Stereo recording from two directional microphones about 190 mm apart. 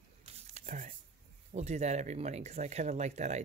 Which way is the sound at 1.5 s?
35° right (ahead or behind).